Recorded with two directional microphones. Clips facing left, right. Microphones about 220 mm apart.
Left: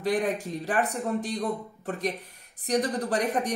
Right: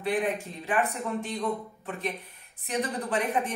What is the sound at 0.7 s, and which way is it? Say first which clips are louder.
Speech: left 1 dB; 40° left (ahead or behind).